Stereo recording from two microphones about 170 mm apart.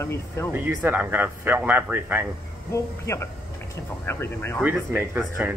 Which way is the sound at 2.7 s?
15° left (ahead or behind).